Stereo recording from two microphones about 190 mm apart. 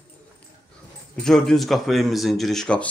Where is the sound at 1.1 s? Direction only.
Centre (ahead or behind).